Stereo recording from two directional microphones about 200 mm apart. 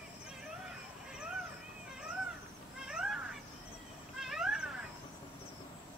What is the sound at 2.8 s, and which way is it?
Cat, 5° right (ahead or behind).